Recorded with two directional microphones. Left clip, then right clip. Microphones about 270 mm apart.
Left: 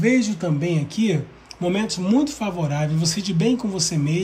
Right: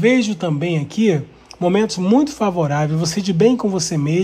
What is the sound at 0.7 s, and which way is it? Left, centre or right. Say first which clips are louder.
Speech: right 7 dB; centre.